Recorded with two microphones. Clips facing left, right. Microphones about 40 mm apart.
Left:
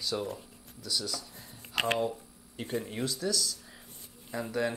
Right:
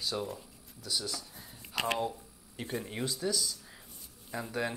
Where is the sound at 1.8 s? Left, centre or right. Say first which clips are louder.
Left 3 dB; left.